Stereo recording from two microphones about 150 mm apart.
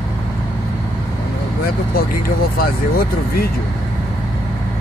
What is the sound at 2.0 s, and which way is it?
Speech, 85° left.